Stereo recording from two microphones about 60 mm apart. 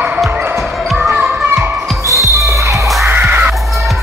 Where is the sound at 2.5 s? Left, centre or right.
Right.